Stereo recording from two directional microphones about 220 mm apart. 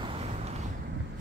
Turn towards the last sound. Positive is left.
turn(degrees=-30)  # may be behind; listen again after turning